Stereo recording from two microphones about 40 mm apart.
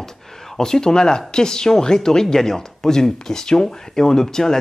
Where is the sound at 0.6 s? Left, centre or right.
Centre.